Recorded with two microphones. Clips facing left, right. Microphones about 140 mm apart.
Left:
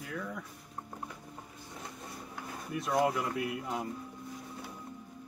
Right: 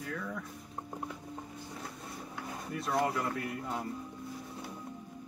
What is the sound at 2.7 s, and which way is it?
Speech, centre (ahead or behind).